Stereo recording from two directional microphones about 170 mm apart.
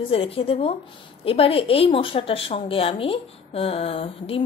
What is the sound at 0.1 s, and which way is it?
A woman's voice, 35° left (ahead or behind).